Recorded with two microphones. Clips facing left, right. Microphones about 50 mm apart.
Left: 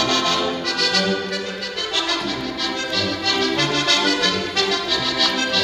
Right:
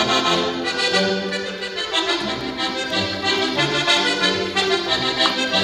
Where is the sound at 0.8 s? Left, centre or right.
Centre.